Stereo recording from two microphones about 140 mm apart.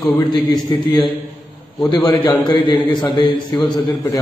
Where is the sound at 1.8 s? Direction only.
30° left (ahead or behind).